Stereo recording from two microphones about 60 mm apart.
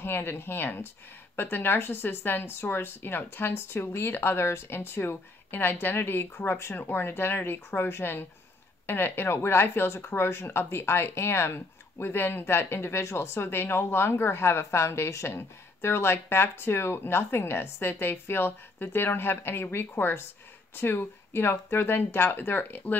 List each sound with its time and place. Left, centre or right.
0.0 s speech: left